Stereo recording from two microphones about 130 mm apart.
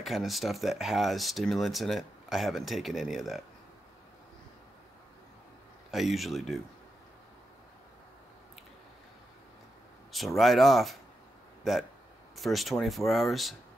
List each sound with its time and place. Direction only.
0.0 s speech: centre (ahead or behind)
5.9 s speech: centre (ahead or behind)
10.1 s speech: centre (ahead or behind)
12.4 s speech: centre (ahead or behind)